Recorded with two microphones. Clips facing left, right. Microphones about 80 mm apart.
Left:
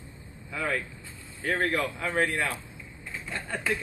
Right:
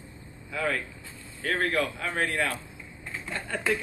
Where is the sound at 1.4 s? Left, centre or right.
Centre.